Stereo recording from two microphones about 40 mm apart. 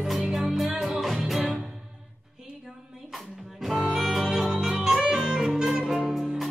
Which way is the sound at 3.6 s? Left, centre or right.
Centre.